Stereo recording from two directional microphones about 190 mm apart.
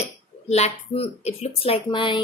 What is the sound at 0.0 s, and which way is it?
Speech, 35° left (ahead or behind).